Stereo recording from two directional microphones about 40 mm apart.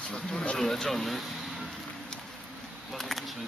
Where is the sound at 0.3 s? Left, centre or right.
Centre.